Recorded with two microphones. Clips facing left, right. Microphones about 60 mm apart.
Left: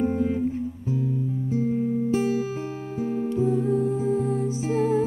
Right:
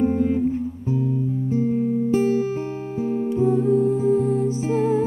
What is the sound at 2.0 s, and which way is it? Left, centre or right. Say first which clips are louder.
Guitar: right 5 dB; right.